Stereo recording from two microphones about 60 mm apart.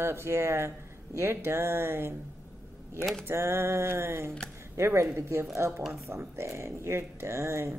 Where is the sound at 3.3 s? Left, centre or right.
Right.